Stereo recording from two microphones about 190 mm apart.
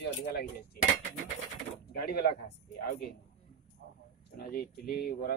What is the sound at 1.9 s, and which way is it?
Speech, 55° left (ahead or behind).